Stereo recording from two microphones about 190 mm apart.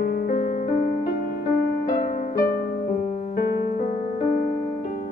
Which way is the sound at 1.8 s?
50° left (ahead or behind).